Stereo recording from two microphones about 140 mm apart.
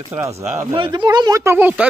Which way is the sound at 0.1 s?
20° right (ahead or behind).